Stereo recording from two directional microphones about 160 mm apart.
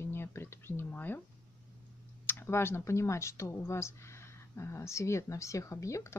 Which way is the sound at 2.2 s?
15° left (ahead or behind).